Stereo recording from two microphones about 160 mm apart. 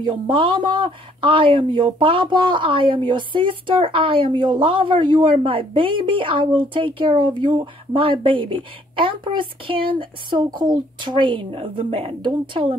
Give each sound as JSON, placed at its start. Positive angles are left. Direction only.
{"t": 0.0, "sound": "speech", "side_deg": -30}